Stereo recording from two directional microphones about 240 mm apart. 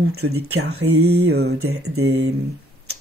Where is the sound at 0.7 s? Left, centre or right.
Right.